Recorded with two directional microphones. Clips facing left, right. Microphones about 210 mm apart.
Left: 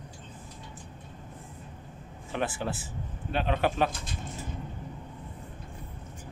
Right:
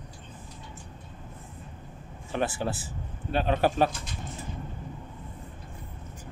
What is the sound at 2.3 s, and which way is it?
Speech, 35° right (ahead or behind).